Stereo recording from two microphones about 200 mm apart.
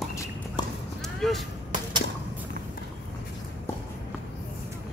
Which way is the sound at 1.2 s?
Centre (ahead or behind).